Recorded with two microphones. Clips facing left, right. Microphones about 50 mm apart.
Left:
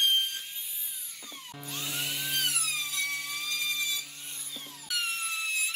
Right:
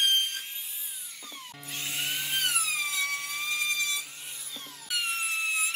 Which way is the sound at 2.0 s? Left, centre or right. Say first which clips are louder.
Right 2 dB; centre.